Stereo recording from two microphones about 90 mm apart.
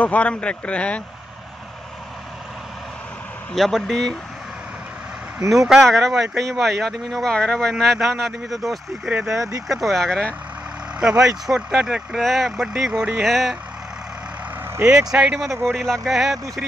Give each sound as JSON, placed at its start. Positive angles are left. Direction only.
{"t": 0.0, "sound": "speech", "side_deg": 15}
{"t": 3.5, "sound": "speech", "side_deg": 0}
{"t": 5.5, "sound": "speech", "side_deg": -5}
{"t": 9.3, "sound": "speech", "side_deg": -35}
{"t": 9.7, "sound": "speech", "side_deg": 0}
{"t": 11.0, "sound": "speech", "side_deg": -15}
{"t": 12.2, "sound": "speech", "side_deg": 0}
{"t": 15.1, "sound": "speech", "side_deg": -15}
{"t": 15.6, "sound": "speech", "side_deg": 5}